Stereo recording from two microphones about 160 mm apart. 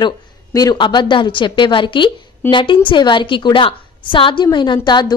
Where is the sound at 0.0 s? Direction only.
25° left (ahead or behind).